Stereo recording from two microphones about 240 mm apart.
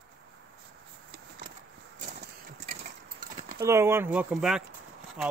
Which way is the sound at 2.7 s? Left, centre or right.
Right.